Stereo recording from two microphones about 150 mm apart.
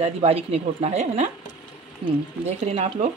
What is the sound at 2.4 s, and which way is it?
Speech, 45° right (ahead or behind).